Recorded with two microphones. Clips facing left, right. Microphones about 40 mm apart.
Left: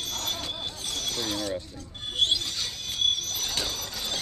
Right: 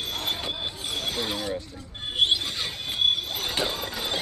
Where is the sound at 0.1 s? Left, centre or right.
Right.